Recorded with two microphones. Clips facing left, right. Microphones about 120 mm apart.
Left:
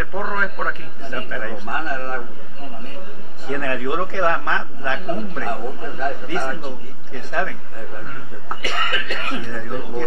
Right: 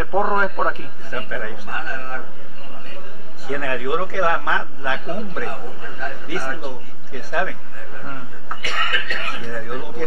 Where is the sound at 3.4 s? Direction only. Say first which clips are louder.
Even; 5° right (ahead or behind).